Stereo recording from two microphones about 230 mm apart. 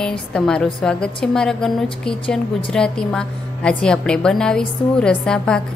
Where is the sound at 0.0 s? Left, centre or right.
Centre.